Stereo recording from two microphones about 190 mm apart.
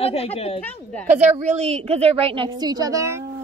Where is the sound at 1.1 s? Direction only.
40° right (ahead or behind); by 3.1 s 20° right (ahead or behind).